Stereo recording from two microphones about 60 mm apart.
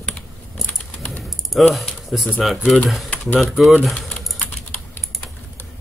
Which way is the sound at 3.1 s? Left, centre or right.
Left.